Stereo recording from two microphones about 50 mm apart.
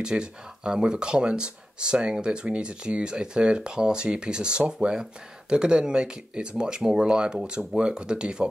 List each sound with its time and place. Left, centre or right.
0.0 s speech: centre